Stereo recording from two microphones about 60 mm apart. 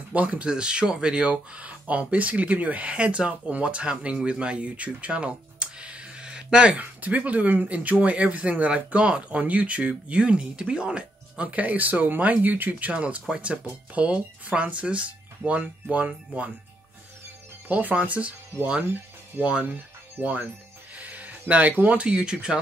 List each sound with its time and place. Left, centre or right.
0.1 s speech: right
17.6 s speech: right
19.4 s speech: centre
20.2 s speech: right
20.9 s a sound: right
22.0 s speech: centre